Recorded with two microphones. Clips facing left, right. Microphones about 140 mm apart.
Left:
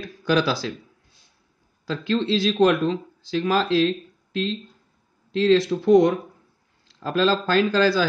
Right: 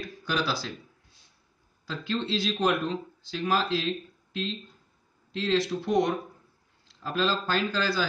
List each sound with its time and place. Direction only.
0.2 s speech: 90° left
1.9 s speech: 90° left
7.0 s speech: 90° left